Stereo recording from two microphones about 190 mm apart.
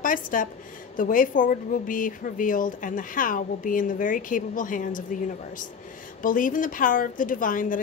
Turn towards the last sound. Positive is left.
turn(degrees=45)  # may be behind; listen again after turning